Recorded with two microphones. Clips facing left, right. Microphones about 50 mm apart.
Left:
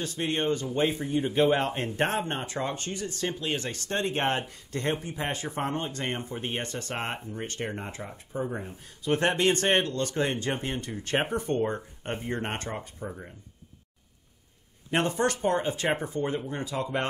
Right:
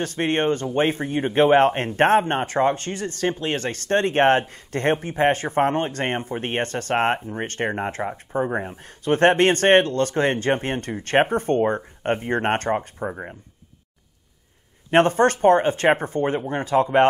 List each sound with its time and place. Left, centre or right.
0.0 s speech: right
14.9 s speech: right